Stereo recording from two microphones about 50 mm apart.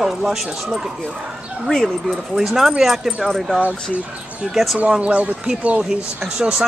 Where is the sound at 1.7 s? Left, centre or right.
Centre.